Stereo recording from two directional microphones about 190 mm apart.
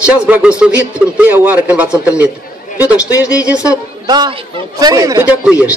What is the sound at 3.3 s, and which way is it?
Speech, 5° right (ahead or behind).